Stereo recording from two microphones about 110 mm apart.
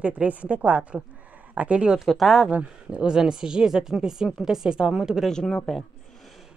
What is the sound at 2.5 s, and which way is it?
Speech, 10° right (ahead or behind).